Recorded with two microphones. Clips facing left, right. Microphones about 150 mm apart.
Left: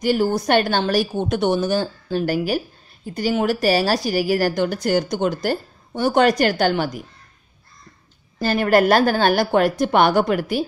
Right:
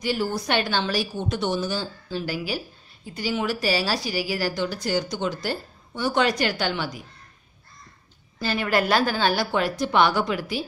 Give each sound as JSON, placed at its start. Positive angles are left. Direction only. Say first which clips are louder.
{"t": 0.0, "sound": "a woman's voice", "louder": "left 7 dB", "side_deg": 50}
{"t": 8.4, "sound": "a woman's voice", "louder": "left 7 dB", "side_deg": 45}